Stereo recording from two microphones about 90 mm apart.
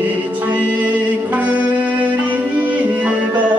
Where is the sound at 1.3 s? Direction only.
15° right (ahead or behind).